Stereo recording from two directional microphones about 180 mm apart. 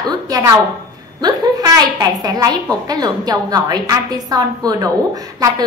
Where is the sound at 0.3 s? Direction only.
20° right (ahead or behind).